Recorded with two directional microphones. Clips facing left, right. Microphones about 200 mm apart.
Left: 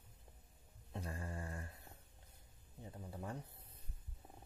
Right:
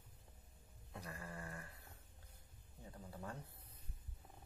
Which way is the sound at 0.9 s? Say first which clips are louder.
Left 4 dB; 25° left (ahead or behind).